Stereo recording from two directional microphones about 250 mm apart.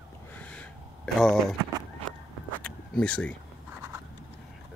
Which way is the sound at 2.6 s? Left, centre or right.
Centre.